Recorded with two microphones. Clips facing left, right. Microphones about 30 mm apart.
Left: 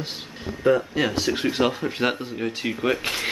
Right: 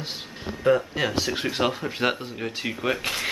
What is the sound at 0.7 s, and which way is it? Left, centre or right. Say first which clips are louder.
Speech: left 1 dB; centre.